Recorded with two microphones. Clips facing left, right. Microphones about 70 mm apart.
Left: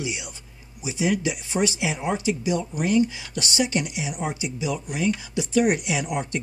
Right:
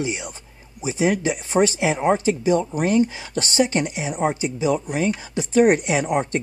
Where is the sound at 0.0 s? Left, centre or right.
Right.